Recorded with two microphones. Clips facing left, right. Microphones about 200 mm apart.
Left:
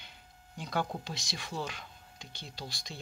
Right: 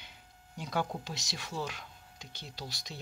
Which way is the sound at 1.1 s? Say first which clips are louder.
Left 1 dB; 40° right (ahead or behind).